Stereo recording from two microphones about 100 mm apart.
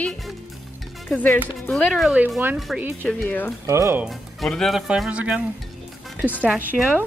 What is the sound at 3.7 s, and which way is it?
Speech, 30° right (ahead or behind).